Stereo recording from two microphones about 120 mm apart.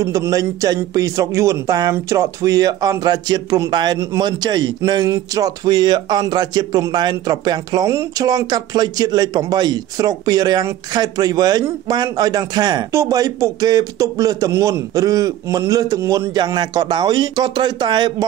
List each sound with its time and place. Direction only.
0.0 s a man's voice: 25° right (ahead or behind)